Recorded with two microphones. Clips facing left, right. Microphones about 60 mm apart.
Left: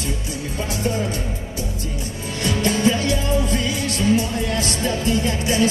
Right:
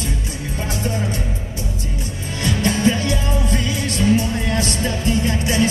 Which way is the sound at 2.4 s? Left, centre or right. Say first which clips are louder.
Right 1 dB; right.